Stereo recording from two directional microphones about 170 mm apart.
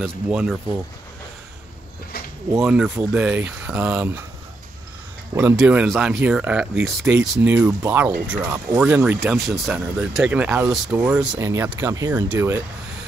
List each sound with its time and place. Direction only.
0.0 s speech: centre (ahead or behind)
2.6 s speech: 5° right (ahead or behind)
5.3 s speech: 15° right (ahead or behind)